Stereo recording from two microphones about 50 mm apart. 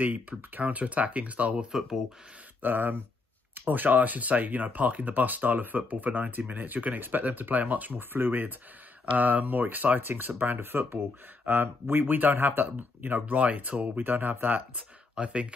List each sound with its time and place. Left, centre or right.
0.0 s speech: right
1.7 s speech: centre
2.6 s speech: right
13.4 s speech: right
15.1 s speech: right